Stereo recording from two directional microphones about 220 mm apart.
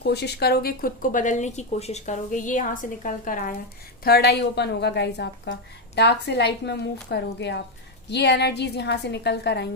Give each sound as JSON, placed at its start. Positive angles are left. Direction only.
{"t": 0.0, "sound": "a woman's voice", "side_deg": 50}